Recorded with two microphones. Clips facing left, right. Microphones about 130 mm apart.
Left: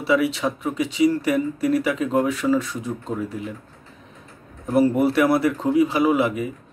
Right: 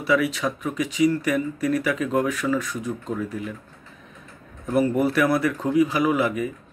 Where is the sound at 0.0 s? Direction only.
25° left (ahead or behind).